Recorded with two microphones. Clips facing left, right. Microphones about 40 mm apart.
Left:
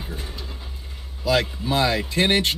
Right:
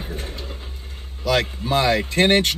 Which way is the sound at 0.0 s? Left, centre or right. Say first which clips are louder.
Right 3 dB; right.